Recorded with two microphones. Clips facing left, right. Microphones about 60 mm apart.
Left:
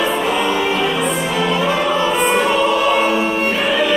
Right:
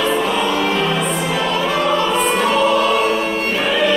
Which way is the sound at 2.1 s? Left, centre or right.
Centre.